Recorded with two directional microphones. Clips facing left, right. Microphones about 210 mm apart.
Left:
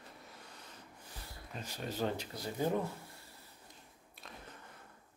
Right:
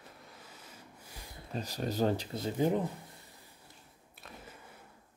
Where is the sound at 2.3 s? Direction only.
20° right (ahead or behind).